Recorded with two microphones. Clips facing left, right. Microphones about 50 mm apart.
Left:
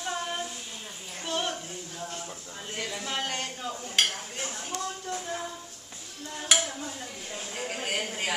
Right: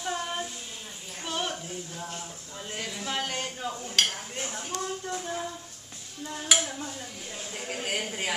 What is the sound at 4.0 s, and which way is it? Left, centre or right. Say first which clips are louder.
Dishes: even; centre.